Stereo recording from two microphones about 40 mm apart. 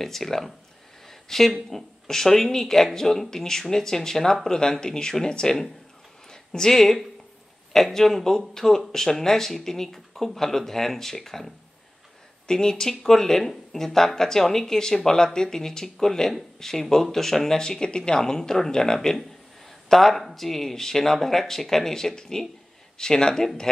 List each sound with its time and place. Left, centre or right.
0.0 s speech: centre
18.9 s a man's voice: centre